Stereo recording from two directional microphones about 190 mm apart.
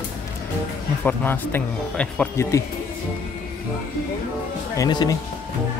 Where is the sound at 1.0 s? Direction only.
10° left (ahead or behind).